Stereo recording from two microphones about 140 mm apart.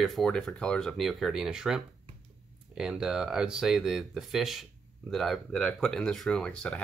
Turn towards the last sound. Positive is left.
turn(degrees=5)  # may be behind; listen again after turning